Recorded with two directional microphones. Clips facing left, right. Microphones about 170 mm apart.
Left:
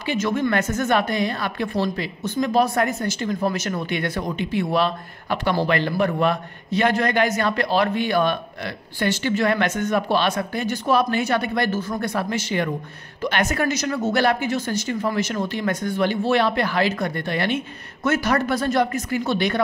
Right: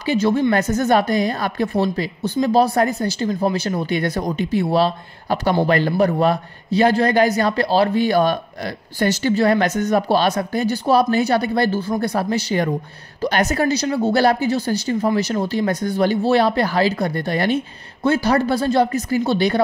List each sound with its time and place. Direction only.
0.0 s a woman's voice: 35° right (ahead or behind)